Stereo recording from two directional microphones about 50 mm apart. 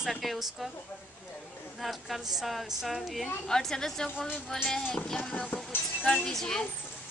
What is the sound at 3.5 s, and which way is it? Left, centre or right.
A woman's voice, centre.